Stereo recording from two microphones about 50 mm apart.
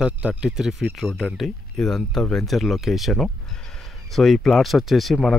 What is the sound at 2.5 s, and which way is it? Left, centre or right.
Speech, centre.